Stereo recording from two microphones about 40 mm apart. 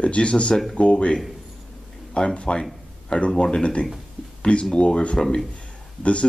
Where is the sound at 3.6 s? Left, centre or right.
Left.